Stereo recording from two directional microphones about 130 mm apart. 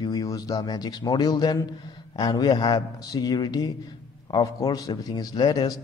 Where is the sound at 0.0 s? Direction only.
25° left (ahead or behind).